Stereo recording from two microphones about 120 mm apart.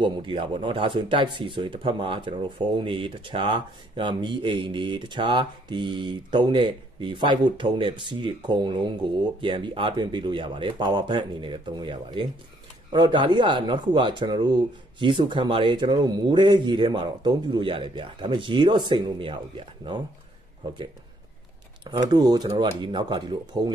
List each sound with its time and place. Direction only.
0.0 s speech: 45° right (ahead or behind)
21.8 s speech: 35° right (ahead or behind)
22.7 s speech: 45° right (ahead or behind)